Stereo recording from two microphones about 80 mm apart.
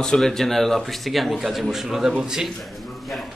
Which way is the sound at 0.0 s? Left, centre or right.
Centre.